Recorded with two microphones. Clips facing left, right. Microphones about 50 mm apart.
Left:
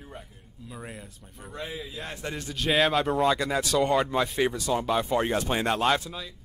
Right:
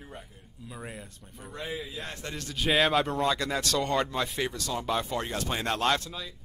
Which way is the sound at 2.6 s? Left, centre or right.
Centre.